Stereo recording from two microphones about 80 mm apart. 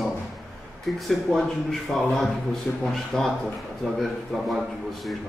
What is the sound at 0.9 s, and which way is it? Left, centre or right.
Speech, centre.